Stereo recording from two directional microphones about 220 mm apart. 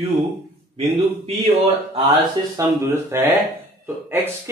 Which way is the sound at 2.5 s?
10° right (ahead or behind).